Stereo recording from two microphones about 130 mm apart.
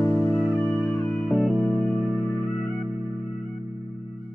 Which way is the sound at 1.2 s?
Centre (ahead or behind).